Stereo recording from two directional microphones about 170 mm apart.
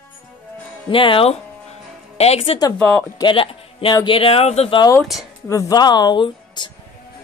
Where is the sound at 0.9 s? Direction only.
30° left (ahead or behind).